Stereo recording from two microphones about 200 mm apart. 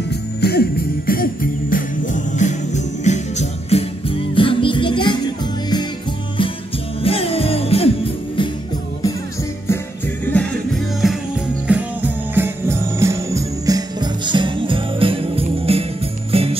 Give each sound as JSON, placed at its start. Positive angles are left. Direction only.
{"t": 0.1, "sound": "music", "side_deg": 50}
{"t": 7.0, "sound": "music", "side_deg": 30}
{"t": 10.3, "sound": "music", "side_deg": 5}